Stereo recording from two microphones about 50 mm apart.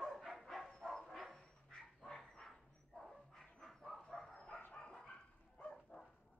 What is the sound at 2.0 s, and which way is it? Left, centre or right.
Dog, centre.